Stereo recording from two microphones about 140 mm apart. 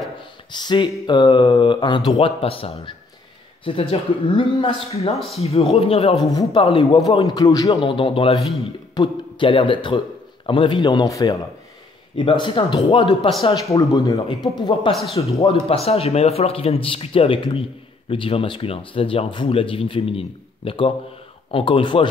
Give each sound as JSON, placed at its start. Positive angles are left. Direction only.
{"t": 0.5, "sound": "speech", "side_deg": 30}
{"t": 5.1, "sound": "speech", "side_deg": 0}
{"t": 5.4, "sound": "speech", "side_deg": 50}
{"t": 7.2, "sound": "speech", "side_deg": 25}
{"t": 7.8, "sound": "speech", "side_deg": 35}
{"t": 12.2, "sound": "speech", "side_deg": 35}
{"t": 13.7, "sound": "speech", "side_deg": 25}
{"t": 14.9, "sound": "speech", "side_deg": 0}
{"t": 15.1, "sound": "speech", "side_deg": 50}